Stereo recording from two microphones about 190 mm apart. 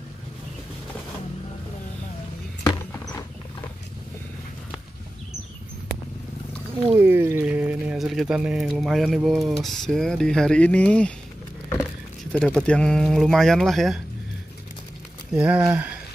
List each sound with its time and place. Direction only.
2.6 s a sound: 20° left (ahead or behind)
7.0 s speech: 10° right (ahead or behind); by 11.1 s 5° left (ahead or behind)
12.3 s speech: 5° left (ahead or behind)
15.3 s speech: 5° right (ahead or behind)